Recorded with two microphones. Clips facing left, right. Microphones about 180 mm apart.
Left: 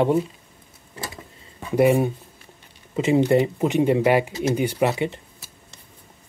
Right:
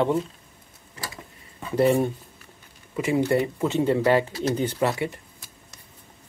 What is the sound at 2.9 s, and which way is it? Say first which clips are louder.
Speech: left 4 dB; 25° left (ahead or behind).